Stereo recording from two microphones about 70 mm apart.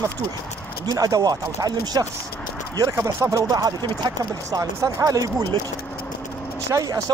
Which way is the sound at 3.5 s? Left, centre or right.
Right.